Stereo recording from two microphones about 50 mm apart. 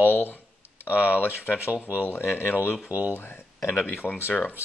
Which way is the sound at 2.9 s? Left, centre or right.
Right.